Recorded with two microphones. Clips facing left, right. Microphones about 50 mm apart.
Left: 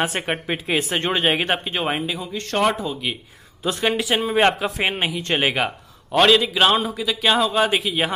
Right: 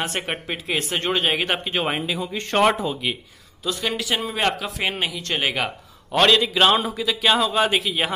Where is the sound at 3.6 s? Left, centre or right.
Left; by 8.1 s centre.